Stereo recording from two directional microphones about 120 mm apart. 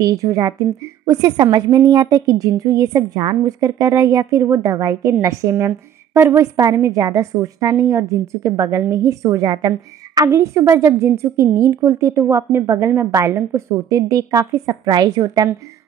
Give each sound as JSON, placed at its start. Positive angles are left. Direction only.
{"t": 0.0, "sound": "a woman's voice", "side_deg": -30}